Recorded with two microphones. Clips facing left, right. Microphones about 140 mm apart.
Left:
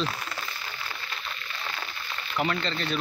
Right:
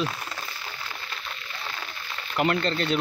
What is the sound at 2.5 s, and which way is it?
Speech, 45° right (ahead or behind).